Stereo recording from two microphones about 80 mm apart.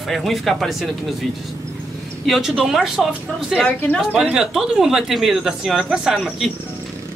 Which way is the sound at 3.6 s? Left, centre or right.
Left.